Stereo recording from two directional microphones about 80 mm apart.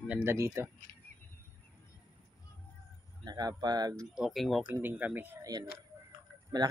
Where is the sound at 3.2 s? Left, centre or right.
Right.